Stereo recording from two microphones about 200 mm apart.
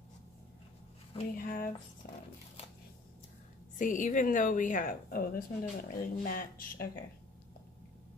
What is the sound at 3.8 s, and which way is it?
A woman's voice, 40° left (ahead or behind).